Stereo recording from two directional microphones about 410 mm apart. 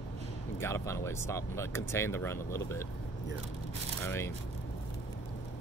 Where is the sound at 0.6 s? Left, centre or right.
Centre.